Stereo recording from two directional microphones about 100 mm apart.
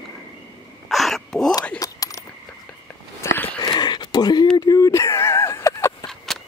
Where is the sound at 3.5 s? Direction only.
45° left (ahead or behind).